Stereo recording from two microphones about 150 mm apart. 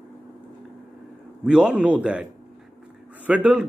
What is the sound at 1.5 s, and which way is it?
Speech, 5° right (ahead or behind).